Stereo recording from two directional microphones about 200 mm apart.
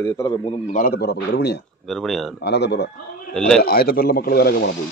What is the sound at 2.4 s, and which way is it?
Speech, 55° left (ahead or behind).